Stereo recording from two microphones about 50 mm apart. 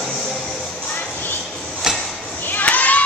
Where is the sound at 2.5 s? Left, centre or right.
Left.